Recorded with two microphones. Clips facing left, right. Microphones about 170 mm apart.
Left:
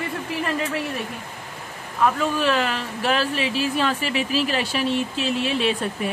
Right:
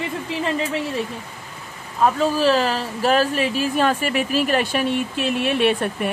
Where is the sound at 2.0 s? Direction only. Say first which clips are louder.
Right 3 dB; 35° right (ahead or behind).